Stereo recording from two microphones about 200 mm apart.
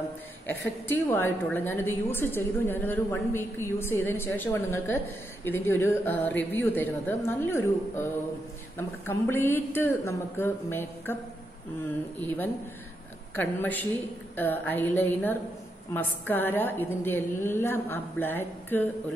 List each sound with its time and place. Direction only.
0.5 s a woman's voice: 10° left (ahead or behind)
13.4 s a woman's voice: 10° left (ahead or behind)